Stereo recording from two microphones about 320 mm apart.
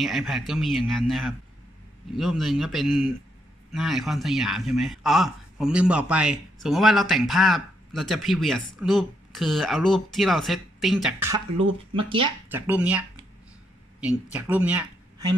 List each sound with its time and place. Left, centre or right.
0.0 s a man's voice: centre
12.5 s a man's voice: centre
14.0 s speech: centre